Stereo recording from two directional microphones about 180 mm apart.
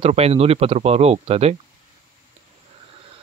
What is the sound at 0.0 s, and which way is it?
Speech, 35° right (ahead or behind).